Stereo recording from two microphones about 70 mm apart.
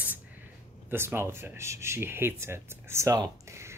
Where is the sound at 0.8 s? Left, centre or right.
Right.